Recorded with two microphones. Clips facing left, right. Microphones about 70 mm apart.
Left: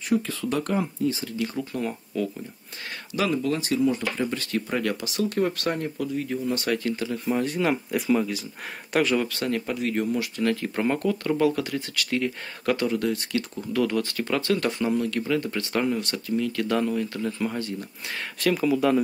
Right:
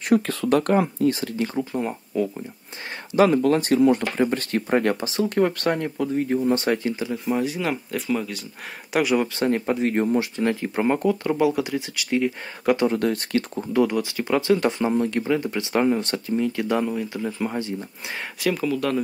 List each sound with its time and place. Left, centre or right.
0.1 s speech: right
1.6 s speech: right
3.2 s speech: right
5.4 s speech: right
5.9 s speech: right; by 7.2 s centre
7.2 s speech: centre
8.9 s speech: centre
12.8 s speech: right
13.7 s speech: centre
15.9 s speech: right
18.4 s speech: centre